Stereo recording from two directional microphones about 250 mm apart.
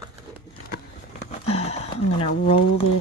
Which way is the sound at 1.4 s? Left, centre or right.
Left.